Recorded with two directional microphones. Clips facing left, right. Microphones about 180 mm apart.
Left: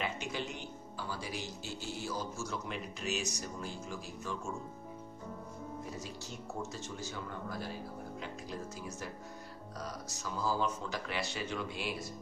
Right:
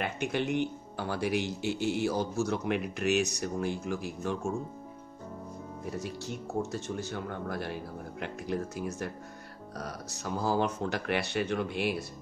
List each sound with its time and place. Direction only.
0.0 s speech: 60° right (ahead or behind)
5.9 s speech: 60° right (ahead or behind)